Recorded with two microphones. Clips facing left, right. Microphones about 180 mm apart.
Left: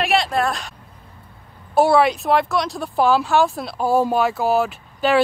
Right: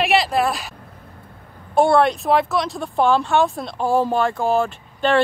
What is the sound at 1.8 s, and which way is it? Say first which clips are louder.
Speech: even; 5° left (ahead or behind).